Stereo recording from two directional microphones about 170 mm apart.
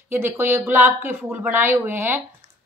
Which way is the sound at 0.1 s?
15° right (ahead or behind).